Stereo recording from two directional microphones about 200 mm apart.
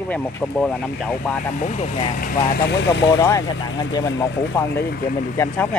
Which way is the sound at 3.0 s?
15° left (ahead or behind).